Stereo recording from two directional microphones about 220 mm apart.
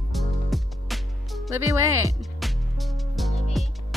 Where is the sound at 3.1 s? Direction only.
Centre (ahead or behind).